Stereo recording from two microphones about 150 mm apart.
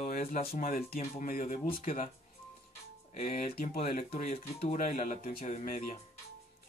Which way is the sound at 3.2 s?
60° left (ahead or behind).